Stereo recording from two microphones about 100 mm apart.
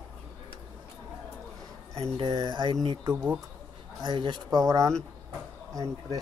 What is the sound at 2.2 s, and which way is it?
Speech, 40° right (ahead or behind).